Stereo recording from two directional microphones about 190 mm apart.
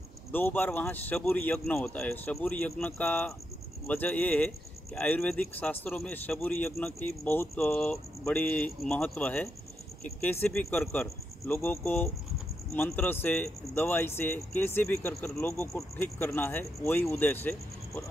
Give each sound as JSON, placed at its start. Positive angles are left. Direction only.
{"t": 0.3, "sound": "a man's voice", "side_deg": 10}